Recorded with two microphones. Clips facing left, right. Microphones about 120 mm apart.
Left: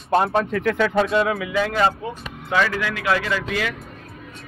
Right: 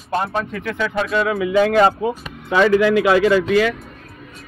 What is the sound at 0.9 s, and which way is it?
Speech, 35° left (ahead or behind).